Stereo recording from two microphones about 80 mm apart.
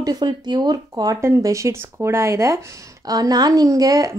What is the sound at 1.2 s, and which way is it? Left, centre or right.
Speech, right.